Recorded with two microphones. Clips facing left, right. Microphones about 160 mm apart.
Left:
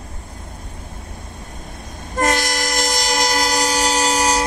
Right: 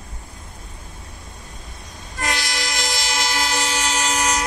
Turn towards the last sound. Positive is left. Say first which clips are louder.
# left 5 dB
turn(degrees=35)  # may be behind; listen again after turning